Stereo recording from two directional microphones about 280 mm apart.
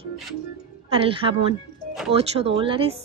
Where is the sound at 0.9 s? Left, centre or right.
Centre.